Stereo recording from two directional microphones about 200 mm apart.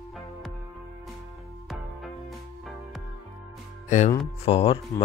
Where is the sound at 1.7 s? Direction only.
Centre (ahead or behind).